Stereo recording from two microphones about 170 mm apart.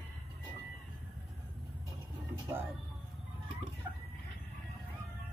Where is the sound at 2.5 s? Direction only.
15° right (ahead or behind).